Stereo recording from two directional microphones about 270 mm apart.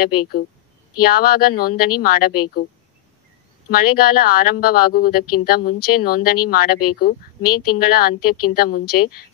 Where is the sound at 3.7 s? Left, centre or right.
Left.